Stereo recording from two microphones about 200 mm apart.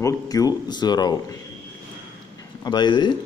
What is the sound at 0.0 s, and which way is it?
Speech, 15° left (ahead or behind).